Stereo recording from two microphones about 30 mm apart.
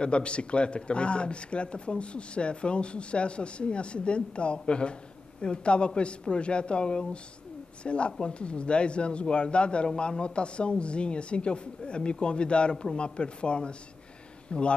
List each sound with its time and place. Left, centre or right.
0.0 s speech: left